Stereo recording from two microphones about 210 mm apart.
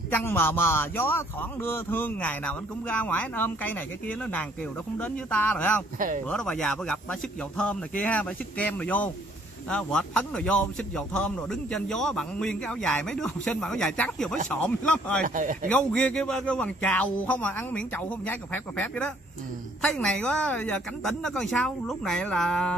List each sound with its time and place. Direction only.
0.1 s a man's voice: 10° left (ahead or behind)
5.9 s speech: 40° right (ahead or behind)
6.2 s a man's voice: 5° left (ahead or behind)
15.2 s speech: 40° right (ahead or behind)
15.7 s a man's voice: 5° left (ahead or behind)